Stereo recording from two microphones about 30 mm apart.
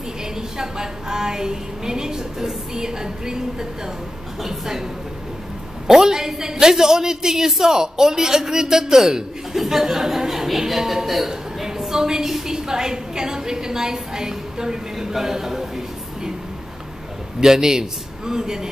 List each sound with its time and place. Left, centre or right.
0.6 s a woman's voice: centre
5.9 s a woman's voice: centre
11.2 s a sound: centre
12.4 s a woman's voice: centre
17.4 s a man's voice: centre